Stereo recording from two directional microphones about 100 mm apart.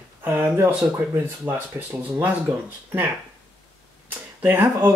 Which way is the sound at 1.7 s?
20° right (ahead or behind).